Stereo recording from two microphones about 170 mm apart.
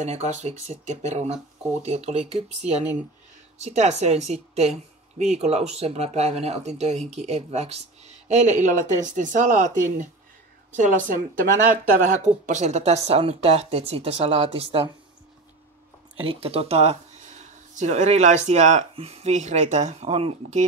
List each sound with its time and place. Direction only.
0.0 s speech: 40° right (ahead or behind)
16.2 s speech: 35° right (ahead or behind)